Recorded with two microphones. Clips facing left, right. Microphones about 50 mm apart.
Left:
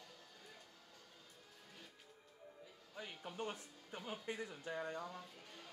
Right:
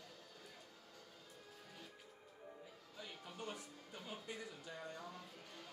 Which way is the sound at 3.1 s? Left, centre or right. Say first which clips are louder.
Left 3 dB; centre.